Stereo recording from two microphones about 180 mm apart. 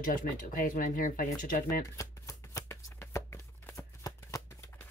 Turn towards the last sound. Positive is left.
turn(degrees=15)  # may be behind; listen again after turning